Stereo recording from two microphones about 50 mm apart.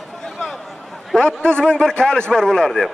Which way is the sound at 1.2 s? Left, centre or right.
Centre.